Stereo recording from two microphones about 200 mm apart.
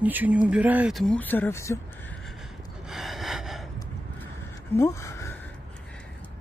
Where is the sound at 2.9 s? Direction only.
Centre (ahead or behind).